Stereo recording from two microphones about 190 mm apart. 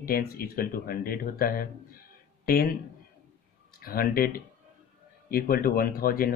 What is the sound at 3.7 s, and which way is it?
Speech, 50° left (ahead or behind).